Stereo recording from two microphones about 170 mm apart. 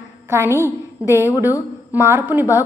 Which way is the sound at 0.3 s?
15° right (ahead or behind).